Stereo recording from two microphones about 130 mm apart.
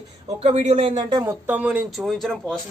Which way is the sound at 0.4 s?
55° right (ahead or behind).